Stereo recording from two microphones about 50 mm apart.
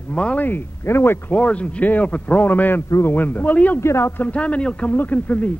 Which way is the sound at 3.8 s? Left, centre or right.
Left.